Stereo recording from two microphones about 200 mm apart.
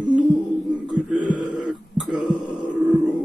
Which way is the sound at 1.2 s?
25° left (ahead or behind).